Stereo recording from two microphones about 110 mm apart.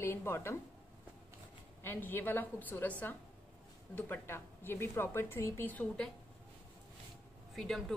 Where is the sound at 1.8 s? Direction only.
20° left (ahead or behind).